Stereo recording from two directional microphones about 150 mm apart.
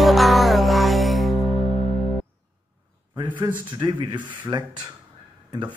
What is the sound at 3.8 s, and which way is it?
Speech, 30° right (ahead or behind).